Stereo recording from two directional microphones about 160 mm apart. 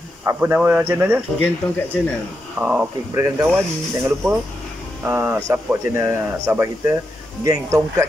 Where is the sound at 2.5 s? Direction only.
10° right (ahead or behind).